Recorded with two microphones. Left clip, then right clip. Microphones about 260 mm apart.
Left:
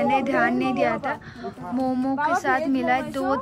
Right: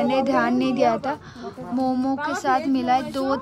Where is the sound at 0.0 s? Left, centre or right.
Centre.